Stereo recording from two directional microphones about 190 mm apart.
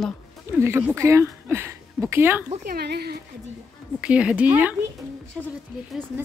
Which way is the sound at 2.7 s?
55° right (ahead or behind).